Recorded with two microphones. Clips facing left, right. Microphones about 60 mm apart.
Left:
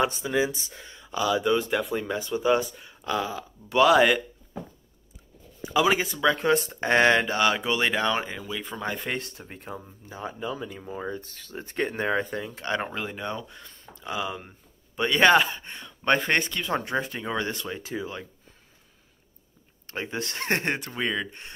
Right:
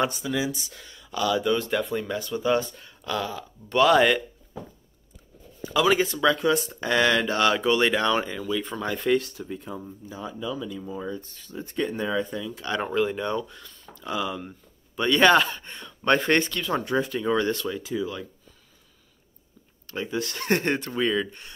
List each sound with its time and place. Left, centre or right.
0.0 s speech: left
1.8 s speech: centre
2.0 s speech: centre
5.7 s speech: centre
6.3 s speech: left
7.2 s speech: centre
9.1 s speech: left
11.1 s speech: left
12.6 s speech: left
13.6 s a sound: left
14.0 s speech: centre
17.7 s speech: left
19.9 s speech: left; by 21.4 s centre